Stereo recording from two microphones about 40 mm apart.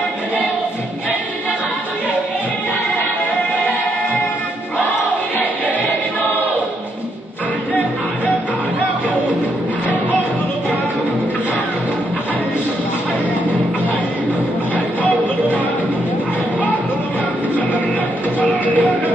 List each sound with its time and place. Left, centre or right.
18.4 s music: left